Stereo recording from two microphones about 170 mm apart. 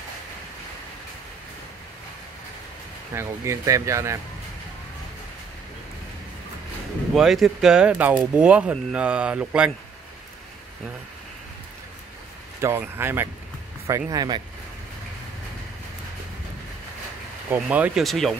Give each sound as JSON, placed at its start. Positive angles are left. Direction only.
{"t": 3.2, "sound": "speech", "side_deg": -15}
{"t": 7.2, "sound": "speech", "side_deg": 0}
{"t": 12.5, "sound": "speech", "side_deg": -15}
{"t": 17.6, "sound": "speech", "side_deg": -10}
{"t": 18.0, "sound": "speech", "side_deg": 0}